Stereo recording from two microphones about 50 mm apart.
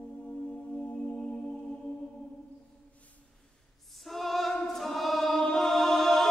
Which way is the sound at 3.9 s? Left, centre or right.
Centre.